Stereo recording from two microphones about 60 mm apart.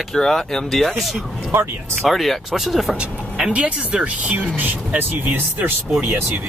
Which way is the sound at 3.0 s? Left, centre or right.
Centre.